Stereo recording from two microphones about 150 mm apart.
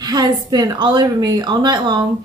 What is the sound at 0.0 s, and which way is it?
A woman's voice, 25° right (ahead or behind).